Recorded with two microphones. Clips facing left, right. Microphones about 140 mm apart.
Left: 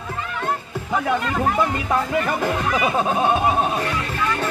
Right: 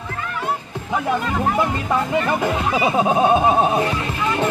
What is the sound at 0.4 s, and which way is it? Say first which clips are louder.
Music: even; 5° right (ahead or behind).